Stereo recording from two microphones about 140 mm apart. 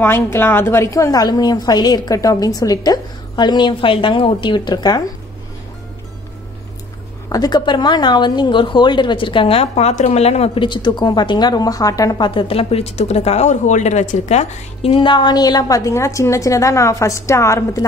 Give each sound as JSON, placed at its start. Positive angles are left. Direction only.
{"t": 0.0, "sound": "a woman's voice", "side_deg": 15}
{"t": 7.2, "sound": "a woman's voice", "side_deg": 30}